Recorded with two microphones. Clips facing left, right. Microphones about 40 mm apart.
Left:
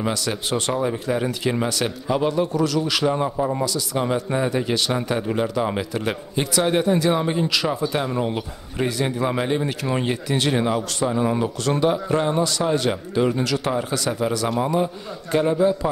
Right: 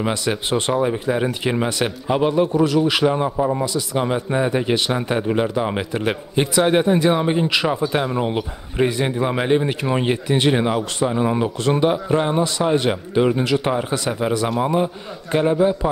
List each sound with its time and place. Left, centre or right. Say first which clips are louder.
0.0 s a man's voice: right 3 dB; right
8.7 s a man's voice: right 4 dB; right